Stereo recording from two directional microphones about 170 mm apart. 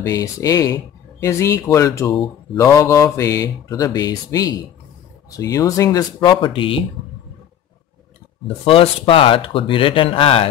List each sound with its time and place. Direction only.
0.0 s speech: 20° left (ahead or behind)
8.6 s speech: 35° left (ahead or behind)